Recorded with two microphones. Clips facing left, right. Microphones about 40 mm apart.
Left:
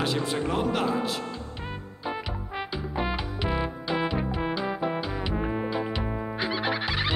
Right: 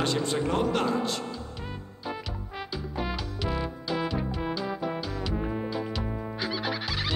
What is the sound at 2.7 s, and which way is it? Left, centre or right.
Music, left.